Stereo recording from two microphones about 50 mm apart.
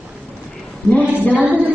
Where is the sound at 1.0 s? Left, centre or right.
Right.